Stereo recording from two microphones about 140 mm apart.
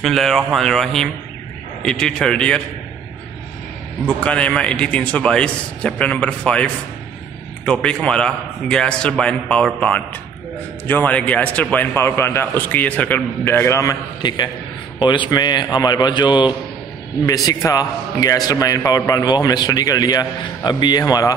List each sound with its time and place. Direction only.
0.0 s speech: centre (ahead or behind)
4.2 s a man's voice: 10° left (ahead or behind); by 21.4 s 25° left (ahead or behind)